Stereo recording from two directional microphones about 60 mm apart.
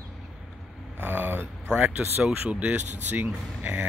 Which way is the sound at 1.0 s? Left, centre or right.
Right.